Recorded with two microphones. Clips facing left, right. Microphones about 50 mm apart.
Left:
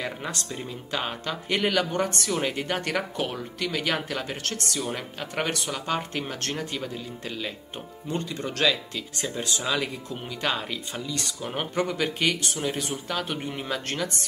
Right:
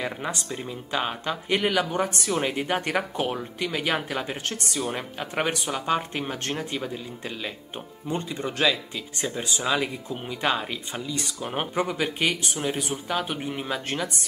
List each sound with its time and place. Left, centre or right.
0.0 s speech: centre